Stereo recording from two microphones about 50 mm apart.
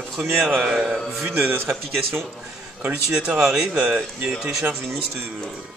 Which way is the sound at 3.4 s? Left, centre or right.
Centre.